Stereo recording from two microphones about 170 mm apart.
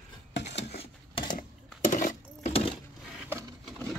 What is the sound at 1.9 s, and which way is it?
Sewing machine, 45° left (ahead or behind).